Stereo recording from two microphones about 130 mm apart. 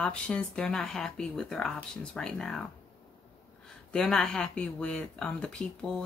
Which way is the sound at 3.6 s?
5° left (ahead or behind).